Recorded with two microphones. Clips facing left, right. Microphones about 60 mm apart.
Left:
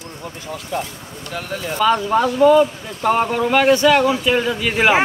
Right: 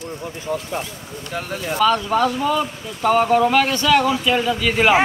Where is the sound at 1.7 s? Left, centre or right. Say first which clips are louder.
Left 1 dB; centre.